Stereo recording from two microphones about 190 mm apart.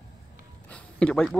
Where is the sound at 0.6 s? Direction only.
5° left (ahead or behind).